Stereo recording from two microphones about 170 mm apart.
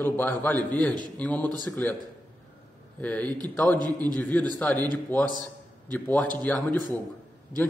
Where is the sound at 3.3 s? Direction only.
25° right (ahead or behind).